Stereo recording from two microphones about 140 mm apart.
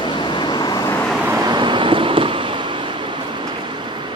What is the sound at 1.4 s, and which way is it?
Vehicle, 30° right (ahead or behind).